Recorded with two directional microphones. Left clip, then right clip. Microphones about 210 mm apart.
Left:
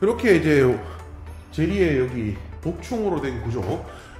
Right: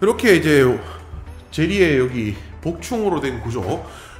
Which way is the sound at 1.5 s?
30° right (ahead or behind).